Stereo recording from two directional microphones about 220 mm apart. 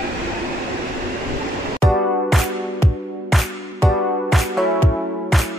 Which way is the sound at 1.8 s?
Centre (ahead or behind).